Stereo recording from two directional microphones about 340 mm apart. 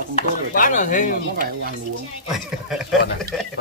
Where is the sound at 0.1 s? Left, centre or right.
Left.